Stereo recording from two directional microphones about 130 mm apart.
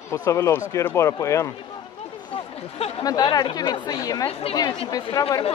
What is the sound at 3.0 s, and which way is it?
Speech, 30° left (ahead or behind).